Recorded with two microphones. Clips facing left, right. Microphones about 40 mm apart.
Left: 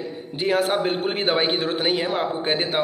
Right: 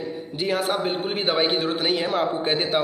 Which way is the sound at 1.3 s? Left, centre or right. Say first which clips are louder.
Right 2 dB; left.